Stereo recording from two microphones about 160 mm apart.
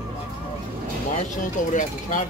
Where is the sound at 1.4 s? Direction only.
55° left (ahead or behind).